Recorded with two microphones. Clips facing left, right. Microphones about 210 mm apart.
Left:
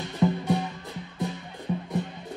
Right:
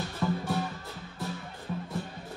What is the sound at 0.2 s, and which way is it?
Music, 20° left (ahead or behind).